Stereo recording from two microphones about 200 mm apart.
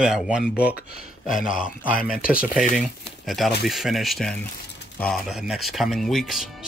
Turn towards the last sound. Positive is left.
turn(degrees=0)  # may be behind; listen again after turning